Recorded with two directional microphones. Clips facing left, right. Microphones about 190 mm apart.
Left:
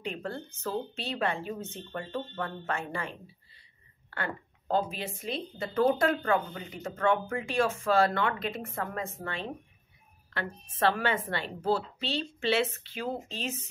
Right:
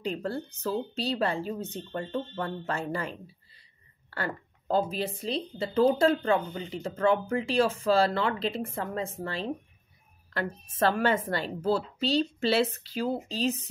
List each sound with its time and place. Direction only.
0.0 s a woman's voice: 35° right (ahead or behind)